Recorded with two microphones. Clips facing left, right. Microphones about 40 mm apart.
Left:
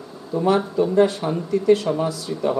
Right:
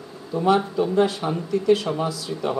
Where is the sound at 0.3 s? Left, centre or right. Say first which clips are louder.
Even; centre.